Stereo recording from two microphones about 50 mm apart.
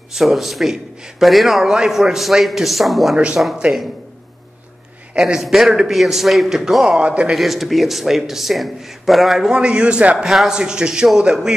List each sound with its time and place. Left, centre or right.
0.1 s a man's voice: centre
3.4 s a man's voice: right
5.2 s a man's voice: centre
7.0 s a man's voice: right
7.3 s a man's voice: centre
9.5 s a man's voice: centre
10.1 s a man's voice: centre
10.5 s speech: centre